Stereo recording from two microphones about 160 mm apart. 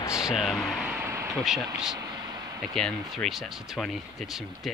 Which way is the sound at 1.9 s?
25° right (ahead or behind).